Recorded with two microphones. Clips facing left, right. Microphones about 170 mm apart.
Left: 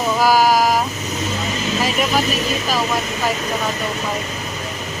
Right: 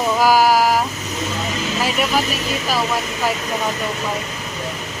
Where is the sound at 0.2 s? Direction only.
10° right (ahead or behind).